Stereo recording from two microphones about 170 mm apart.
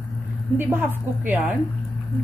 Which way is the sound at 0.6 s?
15° right (ahead or behind).